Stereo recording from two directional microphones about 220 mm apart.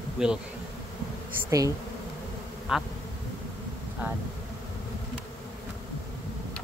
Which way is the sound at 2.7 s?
5° right (ahead or behind).